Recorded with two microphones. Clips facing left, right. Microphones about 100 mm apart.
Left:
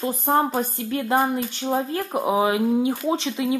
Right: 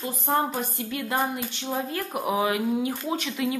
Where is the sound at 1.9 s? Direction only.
25° left (ahead or behind).